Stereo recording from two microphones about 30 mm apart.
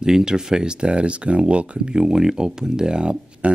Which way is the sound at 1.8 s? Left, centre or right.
Right.